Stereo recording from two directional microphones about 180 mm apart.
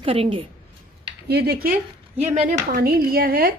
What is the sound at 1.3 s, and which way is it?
Speech, 60° right (ahead or behind).